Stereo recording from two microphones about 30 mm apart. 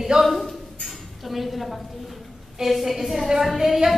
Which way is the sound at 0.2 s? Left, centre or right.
Centre.